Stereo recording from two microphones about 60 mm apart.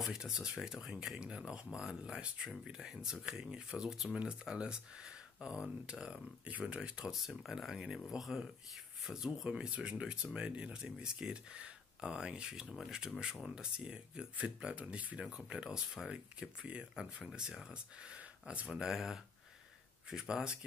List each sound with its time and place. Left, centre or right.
0.0 s speech: centre
7.2 s speech: centre
9.5 s speech: right
15.5 s speech: centre
18.1 s speech: centre